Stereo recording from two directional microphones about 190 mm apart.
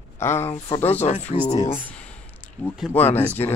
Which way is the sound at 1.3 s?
30° left (ahead or behind).